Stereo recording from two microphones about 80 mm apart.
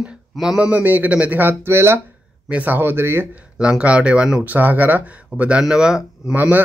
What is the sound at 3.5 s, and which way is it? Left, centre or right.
Speech, centre.